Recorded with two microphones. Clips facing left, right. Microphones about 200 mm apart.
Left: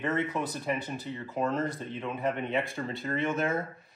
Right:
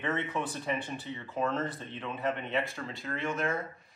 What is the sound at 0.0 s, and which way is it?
Speech, 5° left (ahead or behind).